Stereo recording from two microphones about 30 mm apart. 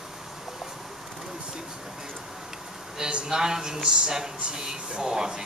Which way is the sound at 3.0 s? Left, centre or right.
Right.